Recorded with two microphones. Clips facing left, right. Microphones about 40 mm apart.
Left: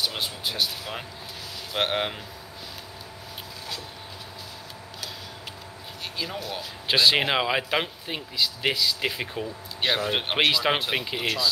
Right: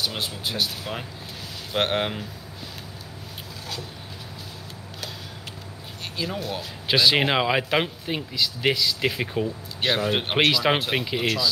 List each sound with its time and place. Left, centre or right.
0.0 s speech: centre
6.1 s speech: centre